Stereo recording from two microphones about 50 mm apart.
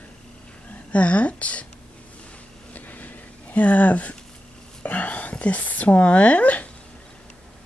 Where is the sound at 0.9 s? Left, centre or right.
Left.